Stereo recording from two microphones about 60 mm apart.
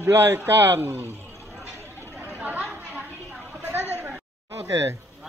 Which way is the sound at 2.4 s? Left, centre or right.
Right.